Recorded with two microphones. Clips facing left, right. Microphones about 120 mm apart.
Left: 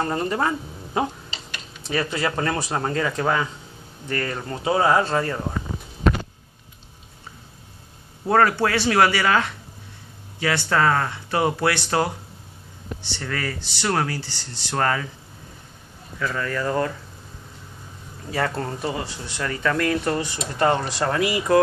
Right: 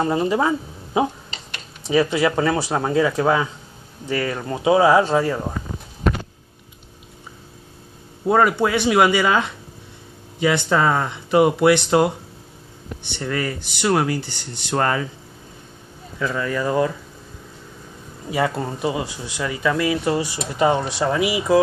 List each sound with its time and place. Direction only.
0.0 s speech: 10° right (ahead or behind)
8.3 s speech: 15° right (ahead or behind)
13.2 s speech: 15° right (ahead or behind)
16.2 s speech: 15° right (ahead or behind)
18.3 s speech: 15° right (ahead or behind)